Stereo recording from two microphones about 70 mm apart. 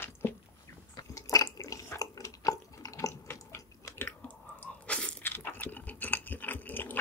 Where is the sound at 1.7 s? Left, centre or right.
Left.